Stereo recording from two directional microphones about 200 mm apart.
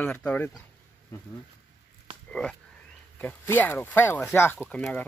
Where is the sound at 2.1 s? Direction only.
25° right (ahead or behind).